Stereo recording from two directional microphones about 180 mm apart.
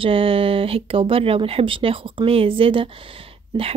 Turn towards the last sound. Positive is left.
turn(degrees=-30)  # may be behind; listen again after turning